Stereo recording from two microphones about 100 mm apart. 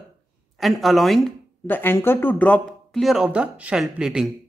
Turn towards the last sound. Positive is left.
turn(degrees=-5)  # may be behind; listen again after turning